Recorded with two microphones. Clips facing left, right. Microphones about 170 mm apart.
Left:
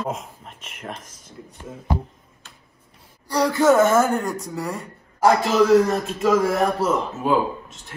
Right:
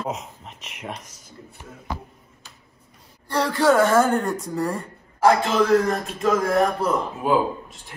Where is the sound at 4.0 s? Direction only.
5° left (ahead or behind).